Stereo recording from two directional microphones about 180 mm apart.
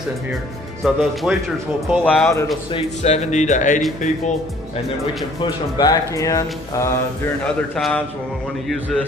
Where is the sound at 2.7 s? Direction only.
40° left (ahead or behind).